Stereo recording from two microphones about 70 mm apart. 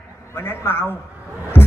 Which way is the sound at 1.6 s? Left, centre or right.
Left.